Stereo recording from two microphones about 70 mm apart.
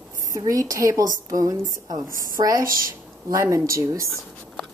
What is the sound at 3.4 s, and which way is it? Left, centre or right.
Speech, right.